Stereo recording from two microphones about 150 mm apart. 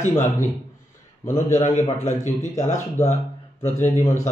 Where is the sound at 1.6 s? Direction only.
50° left (ahead or behind).